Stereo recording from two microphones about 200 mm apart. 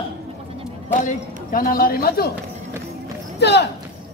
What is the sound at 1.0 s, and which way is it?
A man's voice, 45° left (ahead or behind).